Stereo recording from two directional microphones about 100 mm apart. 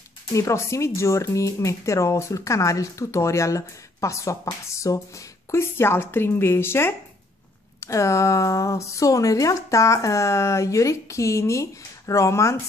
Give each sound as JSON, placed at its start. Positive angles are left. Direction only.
{"t": 0.3, "sound": "speech", "side_deg": 30}